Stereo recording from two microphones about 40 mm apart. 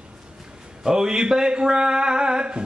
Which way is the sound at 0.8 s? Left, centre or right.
Centre.